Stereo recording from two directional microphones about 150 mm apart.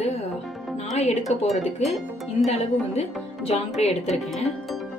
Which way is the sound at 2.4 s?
45° left (ahead or behind).